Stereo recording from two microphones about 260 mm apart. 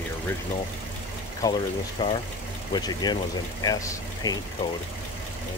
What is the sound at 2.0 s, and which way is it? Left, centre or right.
Speech, centre.